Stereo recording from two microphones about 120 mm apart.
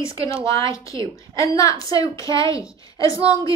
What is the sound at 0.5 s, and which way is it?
A woman's voice, 25° left (ahead or behind).